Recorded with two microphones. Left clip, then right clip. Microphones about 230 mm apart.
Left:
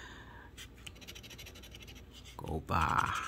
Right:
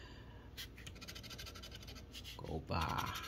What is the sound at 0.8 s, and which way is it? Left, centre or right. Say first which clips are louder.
Scratch: left 2 dB; left.